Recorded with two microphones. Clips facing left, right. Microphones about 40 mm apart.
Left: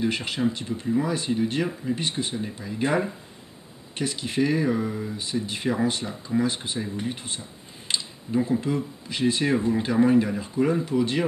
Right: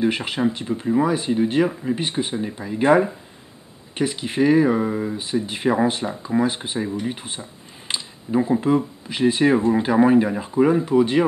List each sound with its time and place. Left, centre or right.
0.0 s speech: centre